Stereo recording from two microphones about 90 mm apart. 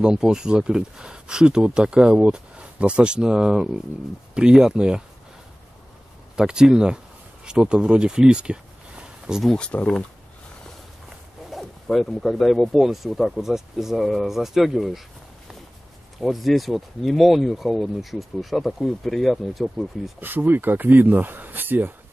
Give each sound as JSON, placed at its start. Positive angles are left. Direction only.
{"t": 0.0, "sound": "speech", "side_deg": -5}
{"t": 6.3, "sound": "speech", "side_deg": -10}
{"t": 9.4, "sound": "speech", "side_deg": 5}
{"t": 9.7, "sound": "speech", "side_deg": 15}
{"t": 11.1, "sound": "speech", "side_deg": 0}
{"t": 16.2, "sound": "speech", "side_deg": 0}
{"t": 20.2, "sound": "speech", "side_deg": -20}